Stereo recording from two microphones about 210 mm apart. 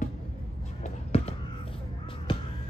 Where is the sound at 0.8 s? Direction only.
30° left (ahead or behind).